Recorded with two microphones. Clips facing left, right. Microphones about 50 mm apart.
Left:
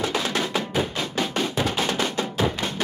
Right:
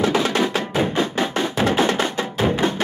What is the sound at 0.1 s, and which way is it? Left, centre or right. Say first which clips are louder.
Music: right 5 dB; right.